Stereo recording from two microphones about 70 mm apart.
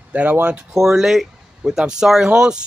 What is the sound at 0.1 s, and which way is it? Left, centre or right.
Speech, centre.